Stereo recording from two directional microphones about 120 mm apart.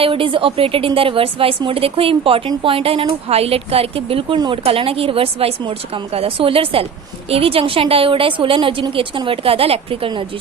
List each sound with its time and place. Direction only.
0.0 s a woman's voice: 50° right (ahead or behind)